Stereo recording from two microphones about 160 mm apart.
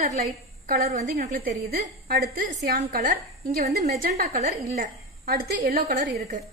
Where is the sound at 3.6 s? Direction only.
45° right (ahead or behind).